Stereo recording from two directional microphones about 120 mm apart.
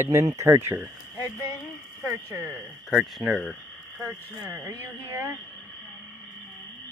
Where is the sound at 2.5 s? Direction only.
Centre (ahead or behind).